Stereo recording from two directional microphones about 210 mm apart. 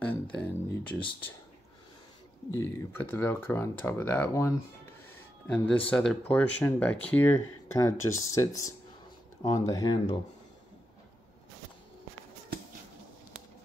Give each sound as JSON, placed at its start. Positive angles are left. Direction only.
{"t": 0.0, "sound": "a sound", "side_deg": 5}
{"t": 2.5, "sound": "speech", "side_deg": 10}
{"t": 5.9, "sound": "speech", "side_deg": 5}